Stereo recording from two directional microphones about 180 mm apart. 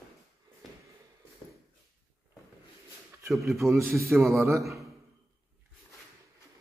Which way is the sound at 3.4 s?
15° right (ahead or behind).